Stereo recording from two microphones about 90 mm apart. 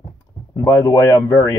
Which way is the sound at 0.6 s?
35° left (ahead or behind).